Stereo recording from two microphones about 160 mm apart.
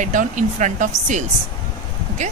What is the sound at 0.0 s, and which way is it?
Speech, 55° right (ahead or behind).